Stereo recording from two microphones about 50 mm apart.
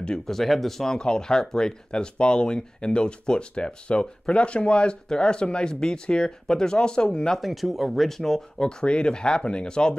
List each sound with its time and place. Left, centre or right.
0.0 s speech: centre
7.3 s speech: centre